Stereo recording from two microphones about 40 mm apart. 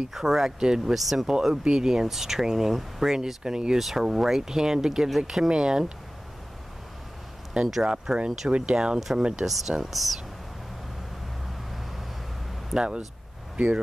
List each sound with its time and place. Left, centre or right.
0.1 s speech: centre
0.9 s speech: centre
1.2 s speech: centre
7.8 s speech: right
9.5 s speech: centre
12.7 s speech: right